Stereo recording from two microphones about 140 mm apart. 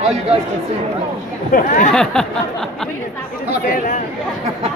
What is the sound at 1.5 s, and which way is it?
Speech, 70° left (ahead or behind).